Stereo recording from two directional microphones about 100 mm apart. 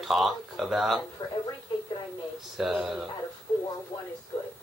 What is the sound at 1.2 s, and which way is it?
Speech, 50° left (ahead or behind).